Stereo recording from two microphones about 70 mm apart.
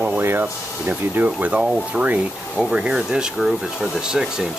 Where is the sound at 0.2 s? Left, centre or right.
Right.